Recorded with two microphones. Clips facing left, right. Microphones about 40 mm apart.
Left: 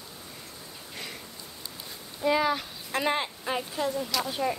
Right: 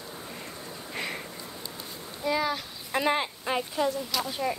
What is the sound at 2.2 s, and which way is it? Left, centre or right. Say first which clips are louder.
Speech: left 3 dB; centre.